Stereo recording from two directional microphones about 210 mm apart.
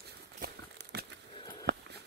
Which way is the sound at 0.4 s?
50° right (ahead or behind).